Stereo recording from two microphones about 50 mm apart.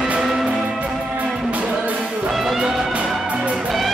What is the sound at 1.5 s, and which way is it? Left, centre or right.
Music, right.